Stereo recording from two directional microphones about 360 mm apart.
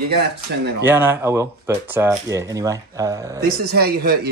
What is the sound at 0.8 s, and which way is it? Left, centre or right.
Speech, centre.